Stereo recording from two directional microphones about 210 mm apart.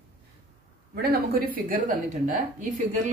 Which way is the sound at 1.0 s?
45° right (ahead or behind).